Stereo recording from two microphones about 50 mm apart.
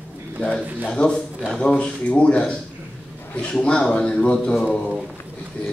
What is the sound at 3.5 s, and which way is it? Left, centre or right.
Speech, centre.